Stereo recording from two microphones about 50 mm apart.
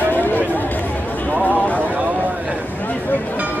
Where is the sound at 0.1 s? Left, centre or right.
Left.